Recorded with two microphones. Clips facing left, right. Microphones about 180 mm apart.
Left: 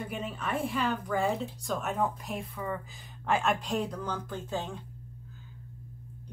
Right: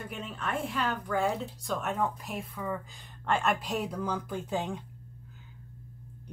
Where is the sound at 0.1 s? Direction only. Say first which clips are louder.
Right 1 dB; 5° left (ahead or behind); by 4.8 s 15° right (ahead or behind).